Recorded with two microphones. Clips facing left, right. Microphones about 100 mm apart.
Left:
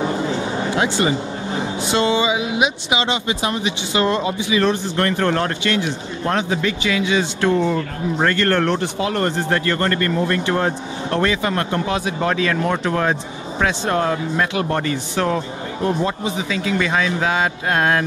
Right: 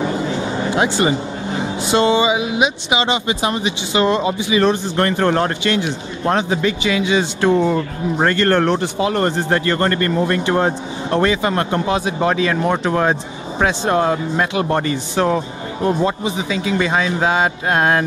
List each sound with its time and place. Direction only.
2.0 s a sound: 30° right (ahead or behind)
2.6 s speech: 5° left (ahead or behind)
3.1 s speech: 25° right (ahead or behind)
3.9 s speech: 10° right (ahead or behind)
4.3 s speech: 20° right (ahead or behind)